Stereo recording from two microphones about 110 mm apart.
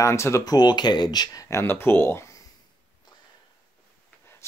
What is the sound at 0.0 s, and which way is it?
Speech, 25° left (ahead or behind).